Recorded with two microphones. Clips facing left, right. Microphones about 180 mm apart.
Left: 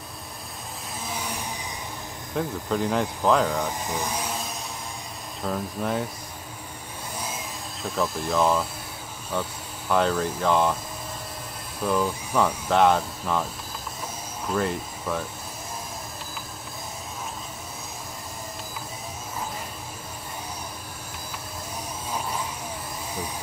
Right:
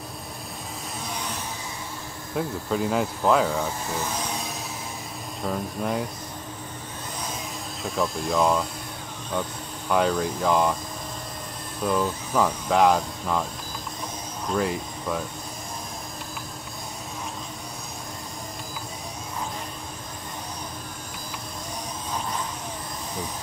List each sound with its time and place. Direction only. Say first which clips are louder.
2.3 s speech: even; 5° right (ahead or behind)
3.8 s speech: even; 15° left (ahead or behind)
5.4 s speech: even; centre (ahead or behind)
7.8 s speech: even; centre (ahead or behind)
11.8 s speech: even; 5° left (ahead or behind)
14.5 s speech: right 1 dB; centre (ahead or behind)